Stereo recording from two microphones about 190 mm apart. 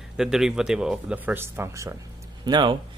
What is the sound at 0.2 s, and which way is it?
A man's voice, centre (ahead or behind).